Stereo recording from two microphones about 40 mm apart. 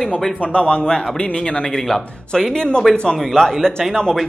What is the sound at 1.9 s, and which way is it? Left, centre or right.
Speech, centre.